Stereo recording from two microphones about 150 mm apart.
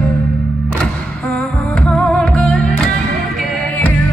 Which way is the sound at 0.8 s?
5° left (ahead or behind).